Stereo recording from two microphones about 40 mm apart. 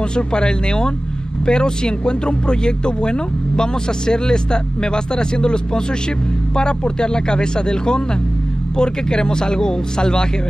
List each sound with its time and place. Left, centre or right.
0.1 s speech: left